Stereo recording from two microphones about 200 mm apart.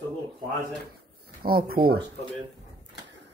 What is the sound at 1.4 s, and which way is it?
Speech, 50° right (ahead or behind).